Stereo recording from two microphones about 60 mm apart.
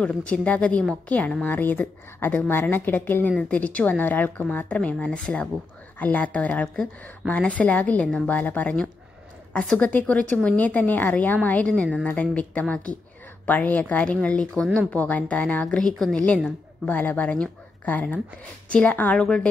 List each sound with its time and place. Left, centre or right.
0.0 s a woman's voice: centre
4.6 s speech: centre
14.9 s speech: left
15.6 s speech: centre
16.8 s speech: left; by 19.4 s centre